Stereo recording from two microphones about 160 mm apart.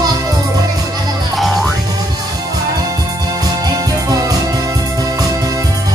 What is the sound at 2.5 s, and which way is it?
Music, 25° right (ahead or behind).